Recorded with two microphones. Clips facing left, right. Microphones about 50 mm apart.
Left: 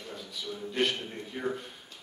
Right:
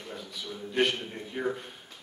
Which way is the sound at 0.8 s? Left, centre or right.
Centre.